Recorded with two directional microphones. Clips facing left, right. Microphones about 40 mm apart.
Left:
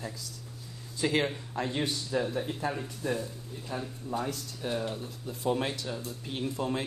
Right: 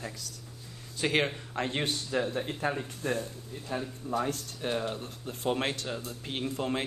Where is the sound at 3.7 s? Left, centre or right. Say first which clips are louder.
Right 2 dB; right.